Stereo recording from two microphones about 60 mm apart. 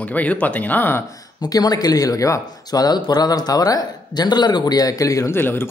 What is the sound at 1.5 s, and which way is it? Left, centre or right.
Speech, left.